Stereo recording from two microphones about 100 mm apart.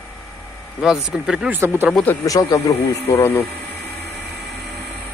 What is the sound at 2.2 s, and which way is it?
Speech, 35° left (ahead or behind).